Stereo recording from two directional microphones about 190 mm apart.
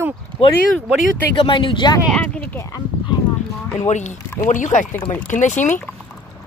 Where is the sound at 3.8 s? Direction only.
35° left (ahead or behind).